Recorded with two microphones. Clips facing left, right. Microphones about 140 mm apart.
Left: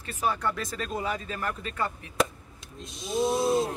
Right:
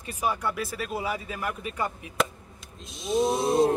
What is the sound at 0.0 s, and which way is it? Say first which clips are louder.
Speech: even; 15° right (ahead or behind).